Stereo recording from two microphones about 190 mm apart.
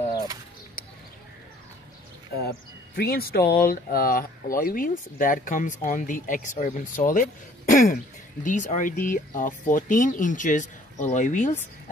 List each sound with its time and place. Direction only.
3.0 s speech: 55° left (ahead or behind)